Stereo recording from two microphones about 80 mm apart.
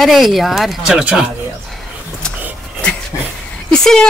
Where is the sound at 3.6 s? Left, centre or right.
Centre.